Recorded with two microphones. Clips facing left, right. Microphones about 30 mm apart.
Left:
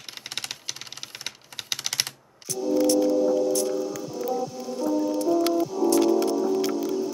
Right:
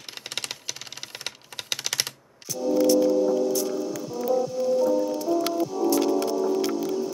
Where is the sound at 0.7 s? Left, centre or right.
Centre.